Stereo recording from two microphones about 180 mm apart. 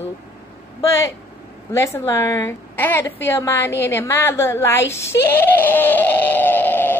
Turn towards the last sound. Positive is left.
turn(degrees=10)  # may be behind; listen again after turning